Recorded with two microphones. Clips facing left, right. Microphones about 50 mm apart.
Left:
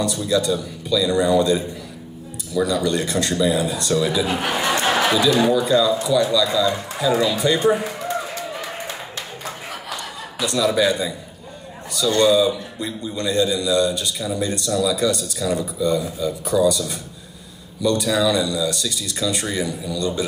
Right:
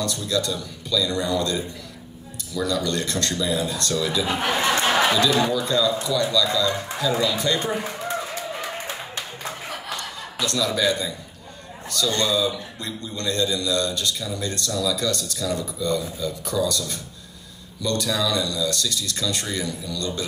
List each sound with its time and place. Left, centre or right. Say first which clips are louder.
0.0 s speech: left 5 dB; centre
10.4 s speech: left 4 dB; centre
12.2 s speech: left 10 dB; centre